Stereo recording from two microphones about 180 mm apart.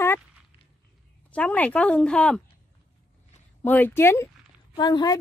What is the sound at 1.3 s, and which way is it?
Speech, 5° left (ahead or behind).